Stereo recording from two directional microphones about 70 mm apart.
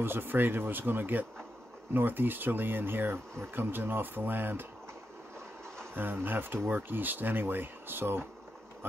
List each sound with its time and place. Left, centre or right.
0.0 s speech: right
5.9 s speech: right